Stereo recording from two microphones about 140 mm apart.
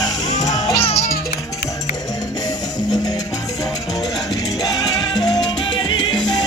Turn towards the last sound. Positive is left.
turn(degrees=30)  # may be behind; listen again after turning